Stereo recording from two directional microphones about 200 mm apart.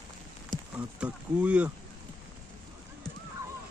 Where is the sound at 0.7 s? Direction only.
5° right (ahead or behind).